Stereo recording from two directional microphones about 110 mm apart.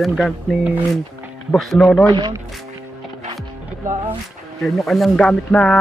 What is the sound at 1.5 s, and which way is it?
Speech, 5° left (ahead or behind).